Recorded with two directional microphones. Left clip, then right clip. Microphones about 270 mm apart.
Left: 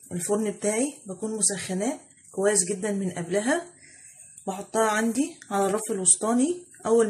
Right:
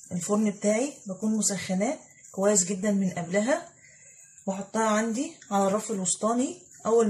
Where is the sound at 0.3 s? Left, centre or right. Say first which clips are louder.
Even; left.